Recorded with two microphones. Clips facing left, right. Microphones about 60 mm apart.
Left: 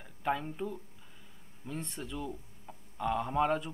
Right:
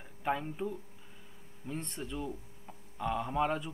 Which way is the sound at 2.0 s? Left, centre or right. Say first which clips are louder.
Right 1 dB; centre.